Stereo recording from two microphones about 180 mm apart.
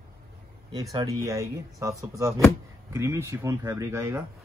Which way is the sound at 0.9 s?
15° right (ahead or behind).